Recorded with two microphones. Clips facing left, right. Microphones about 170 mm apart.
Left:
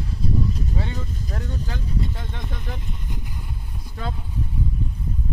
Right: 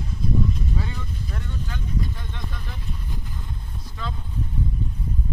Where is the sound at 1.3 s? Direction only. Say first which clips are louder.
Left 3 dB; 40° left (ahead or behind).